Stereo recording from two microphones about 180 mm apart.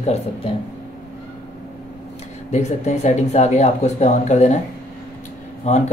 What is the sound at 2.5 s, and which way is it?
Speech, 40° left (ahead or behind).